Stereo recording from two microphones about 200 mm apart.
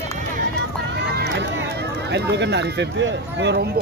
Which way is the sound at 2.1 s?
60° right (ahead or behind).